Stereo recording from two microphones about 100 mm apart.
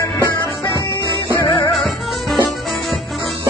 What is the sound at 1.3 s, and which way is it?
Music, 35° left (ahead or behind).